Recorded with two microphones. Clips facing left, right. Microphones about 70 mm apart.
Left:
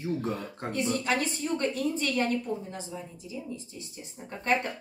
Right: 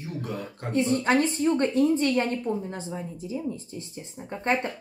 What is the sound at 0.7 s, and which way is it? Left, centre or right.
Speech, right.